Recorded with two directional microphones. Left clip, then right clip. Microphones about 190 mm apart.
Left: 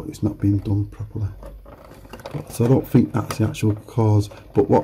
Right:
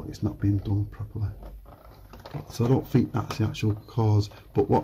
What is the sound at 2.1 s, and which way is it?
Speech, centre (ahead or behind).